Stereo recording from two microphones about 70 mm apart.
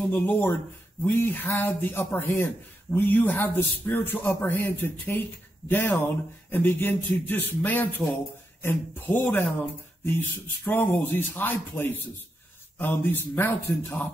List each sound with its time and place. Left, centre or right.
0.0 s speech: left